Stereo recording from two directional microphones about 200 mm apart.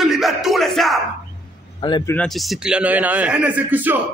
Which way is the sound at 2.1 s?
5° left (ahead or behind).